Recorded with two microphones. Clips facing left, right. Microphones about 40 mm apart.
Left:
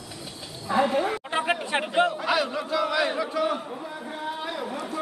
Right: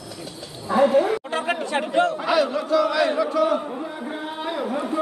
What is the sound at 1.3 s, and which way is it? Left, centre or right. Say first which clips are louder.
Speech: right 2 dB; centre.